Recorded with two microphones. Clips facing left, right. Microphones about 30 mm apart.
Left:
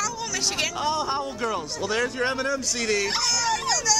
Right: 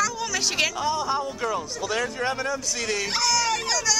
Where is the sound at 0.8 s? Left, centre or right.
Left.